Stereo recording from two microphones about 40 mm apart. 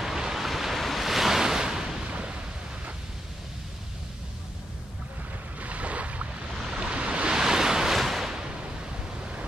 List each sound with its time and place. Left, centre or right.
0.0 s waves: centre
2.1 s a sound: right
5.6 s a sound: right
6.5 s waves: centre
6.8 s waves: right
7.3 s waves: centre
8.0 s waves: centre
9.2 s vehicle: right